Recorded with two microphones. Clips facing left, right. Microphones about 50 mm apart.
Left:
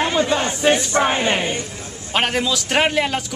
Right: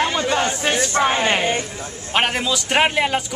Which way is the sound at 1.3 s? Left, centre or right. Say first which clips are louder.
Right 1 dB; right.